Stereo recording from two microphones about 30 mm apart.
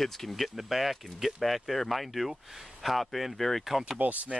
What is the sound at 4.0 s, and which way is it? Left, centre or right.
Speech, right.